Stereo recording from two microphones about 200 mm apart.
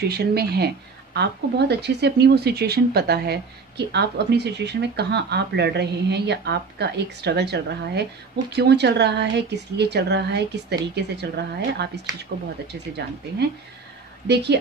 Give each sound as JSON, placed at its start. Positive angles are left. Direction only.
{"t": 0.0, "sound": "speech", "side_deg": -55}
{"t": 14.2, "sound": "speech", "side_deg": -55}